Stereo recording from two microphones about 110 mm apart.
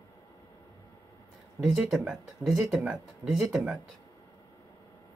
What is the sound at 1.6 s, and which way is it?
Speech, 5° right (ahead or behind).